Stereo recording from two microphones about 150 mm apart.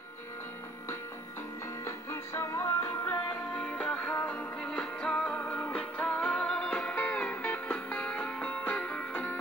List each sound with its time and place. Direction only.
1.9 s music: 15° left (ahead or behind)